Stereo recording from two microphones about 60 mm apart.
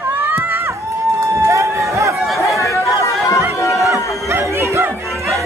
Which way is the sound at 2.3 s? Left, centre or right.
Left.